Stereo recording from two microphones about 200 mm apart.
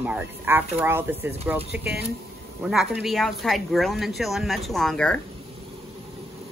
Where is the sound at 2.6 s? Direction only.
Centre (ahead or behind).